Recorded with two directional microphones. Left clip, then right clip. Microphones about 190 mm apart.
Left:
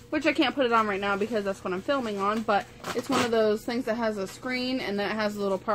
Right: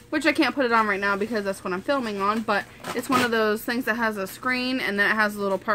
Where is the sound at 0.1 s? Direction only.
35° right (ahead or behind).